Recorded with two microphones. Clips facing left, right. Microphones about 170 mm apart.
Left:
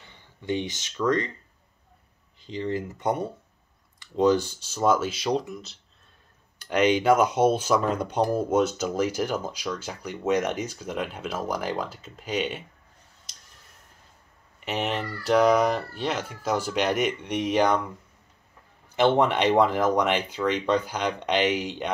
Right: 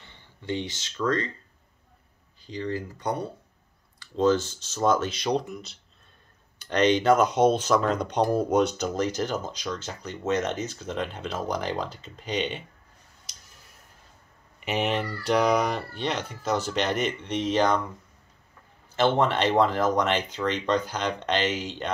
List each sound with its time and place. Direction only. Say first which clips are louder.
0.0 s speech: left 2 dB; 15° left (ahead or behind)
2.3 s speech: left 2 dB; 20° left (ahead or behind); by 12.6 s 5° left (ahead or behind)
13.3 s a sound: right 1 dB; centre (ahead or behind)
14.6 s speech: right 2 dB; centre (ahead or behind)
18.9 s speech: left 2 dB; 15° left (ahead or behind)